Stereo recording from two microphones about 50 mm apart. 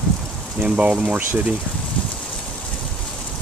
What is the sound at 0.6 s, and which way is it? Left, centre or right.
Speech, right.